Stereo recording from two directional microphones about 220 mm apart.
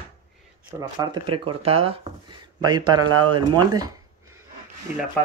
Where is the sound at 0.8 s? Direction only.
15° right (ahead or behind).